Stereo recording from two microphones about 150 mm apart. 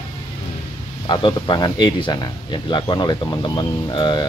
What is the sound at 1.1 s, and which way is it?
Speech, 30° left (ahead or behind).